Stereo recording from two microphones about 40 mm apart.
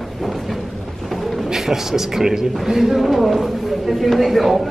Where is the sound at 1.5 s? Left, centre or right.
Centre.